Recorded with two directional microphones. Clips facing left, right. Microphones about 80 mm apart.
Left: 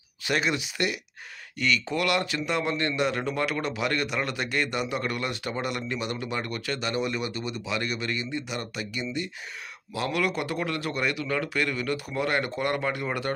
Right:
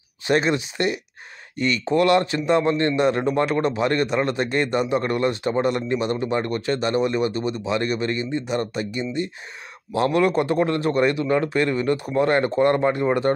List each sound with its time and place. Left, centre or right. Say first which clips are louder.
0.3 s a man's voice: right 7 dB; right